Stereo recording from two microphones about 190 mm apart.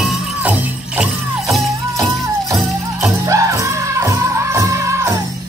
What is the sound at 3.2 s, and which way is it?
Music, 15° right (ahead or behind).